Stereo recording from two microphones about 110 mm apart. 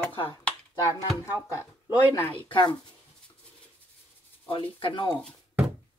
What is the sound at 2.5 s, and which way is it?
Speech, 45° left (ahead or behind).